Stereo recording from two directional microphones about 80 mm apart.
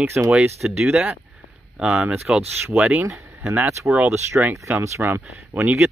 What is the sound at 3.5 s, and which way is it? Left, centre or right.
Speech, right.